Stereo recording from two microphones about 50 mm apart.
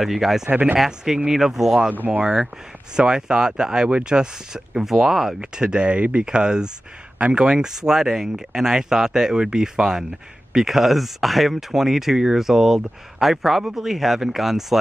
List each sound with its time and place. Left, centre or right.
0.0 s speech: centre
0.5 s speech: right
0.7 s speech: centre
2.0 s speech: right
3.0 s speech: centre
5.6 s speech: centre